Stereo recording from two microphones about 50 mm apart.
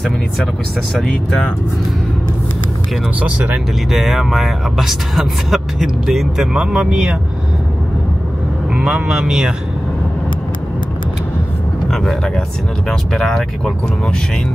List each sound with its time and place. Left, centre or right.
3.2 s speech: right
3.9 s speech: centre
8.7 s speech: centre
11.9 s speech: centre